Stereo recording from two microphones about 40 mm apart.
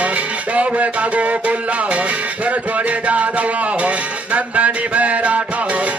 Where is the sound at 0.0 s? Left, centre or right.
Right.